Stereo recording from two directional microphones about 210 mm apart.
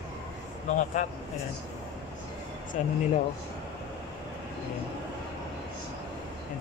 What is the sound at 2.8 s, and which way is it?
Speech, 35° left (ahead or behind).